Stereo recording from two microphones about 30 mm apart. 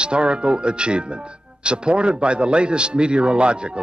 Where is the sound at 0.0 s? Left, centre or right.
Right.